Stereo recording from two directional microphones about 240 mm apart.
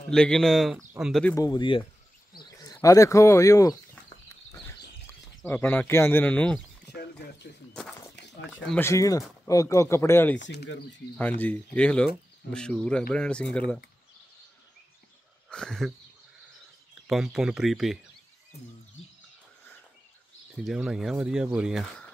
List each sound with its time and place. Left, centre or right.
0.1 s speech: centre
1.3 s speech: centre
5.4 s speech: centre
6.9 s speech: left
7.7 s speech: centre
10.4 s speech: left
11.1 s speech: centre
15.5 s speech: centre
16.9 s speech: centre
18.5 s bird: left
20.5 s speech: centre